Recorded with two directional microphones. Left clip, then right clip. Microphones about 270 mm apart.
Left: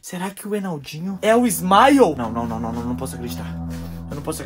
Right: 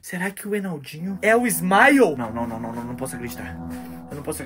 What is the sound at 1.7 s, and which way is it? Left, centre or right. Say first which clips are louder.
Speech: left 2 dB; centre.